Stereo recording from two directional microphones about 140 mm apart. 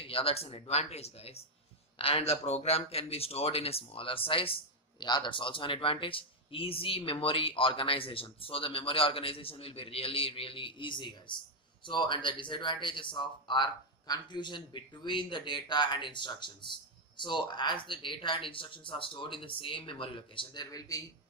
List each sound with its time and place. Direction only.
0.0 s speech: 40° left (ahead or behind); by 21.0 s 25° left (ahead or behind)